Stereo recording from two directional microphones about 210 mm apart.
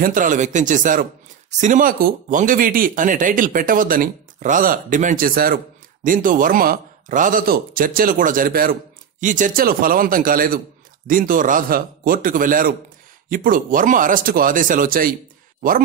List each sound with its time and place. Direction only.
0.0 s a man's voice: 40° right (ahead or behind)